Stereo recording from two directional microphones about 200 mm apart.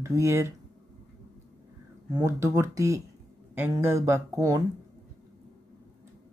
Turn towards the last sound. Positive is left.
turn(degrees=-15)  # may be behind; listen again after turning